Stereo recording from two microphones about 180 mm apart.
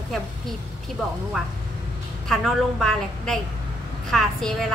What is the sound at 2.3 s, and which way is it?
A woman's voice, centre (ahead or behind).